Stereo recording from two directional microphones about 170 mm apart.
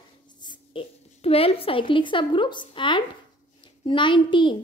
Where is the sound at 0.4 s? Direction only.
30° left (ahead or behind).